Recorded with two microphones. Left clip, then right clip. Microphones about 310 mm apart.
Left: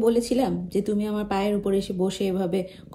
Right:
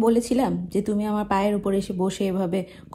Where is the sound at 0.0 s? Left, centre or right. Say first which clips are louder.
Right 1 dB; right.